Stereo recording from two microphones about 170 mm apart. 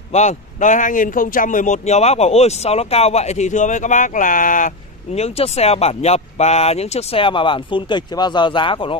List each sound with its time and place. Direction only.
0.1 s speech: 40° left (ahead or behind)